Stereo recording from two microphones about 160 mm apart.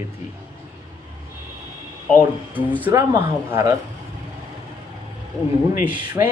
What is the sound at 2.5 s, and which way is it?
Speech, 10° right (ahead or behind).